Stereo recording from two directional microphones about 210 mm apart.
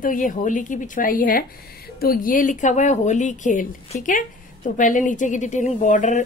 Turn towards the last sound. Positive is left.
turn(degrees=35)  # may be behind; listen again after turning